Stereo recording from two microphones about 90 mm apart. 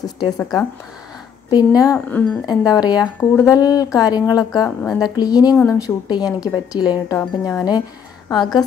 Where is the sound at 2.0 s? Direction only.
15° left (ahead or behind).